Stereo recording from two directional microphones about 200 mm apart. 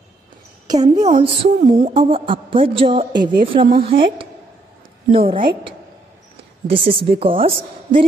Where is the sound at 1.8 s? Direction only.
25° right (ahead or behind).